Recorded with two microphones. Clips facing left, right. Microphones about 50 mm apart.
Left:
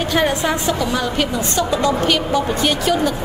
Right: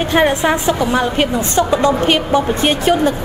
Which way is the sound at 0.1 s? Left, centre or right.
Right.